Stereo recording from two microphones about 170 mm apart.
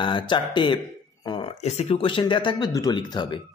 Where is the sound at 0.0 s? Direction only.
30° left (ahead or behind).